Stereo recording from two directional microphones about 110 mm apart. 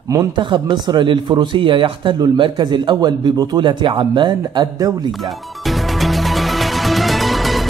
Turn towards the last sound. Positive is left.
turn(degrees=0)  # may be behind; listen again after turning